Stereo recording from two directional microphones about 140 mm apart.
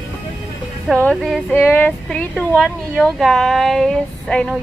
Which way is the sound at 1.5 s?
15° left (ahead or behind).